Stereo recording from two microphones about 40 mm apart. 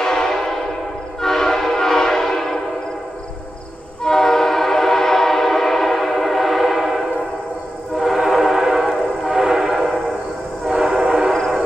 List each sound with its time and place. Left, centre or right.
0.0 s train: centre
4.0 s train: centre
8.0 s train: centre